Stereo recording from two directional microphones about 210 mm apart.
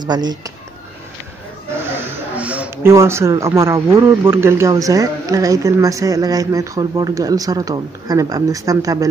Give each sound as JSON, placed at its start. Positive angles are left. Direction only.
{"t": 0.0, "sound": "speech", "side_deg": -20}
{"t": 1.9, "sound": "speech", "side_deg": -5}